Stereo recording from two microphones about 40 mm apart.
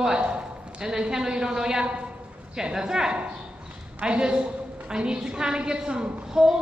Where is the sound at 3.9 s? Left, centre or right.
Right.